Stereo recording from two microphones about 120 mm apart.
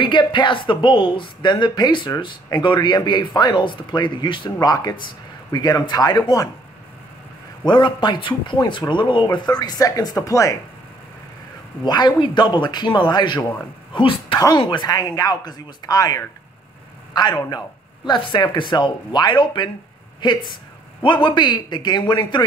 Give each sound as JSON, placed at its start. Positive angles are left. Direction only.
{"t": 0.0, "sound": "a woman's voice", "side_deg": 40}
{"t": 7.6, "sound": "a woman's voice", "side_deg": 40}
{"t": 11.8, "sound": "a woman's voice", "side_deg": 35}
{"t": 14.6, "sound": "a woman's voice", "side_deg": 40}